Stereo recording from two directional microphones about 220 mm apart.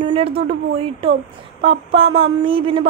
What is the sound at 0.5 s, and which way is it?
A woman's voice, 25° right (ahead or behind).